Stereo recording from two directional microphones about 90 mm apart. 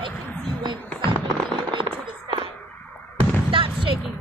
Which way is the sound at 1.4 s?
65° right (ahead or behind).